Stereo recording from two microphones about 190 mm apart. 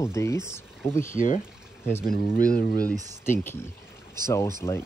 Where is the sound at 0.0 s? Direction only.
15° left (ahead or behind).